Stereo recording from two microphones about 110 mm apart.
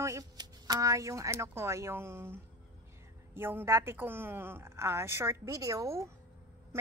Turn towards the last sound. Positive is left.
turn(degrees=-30)  # may be behind; listen again after turning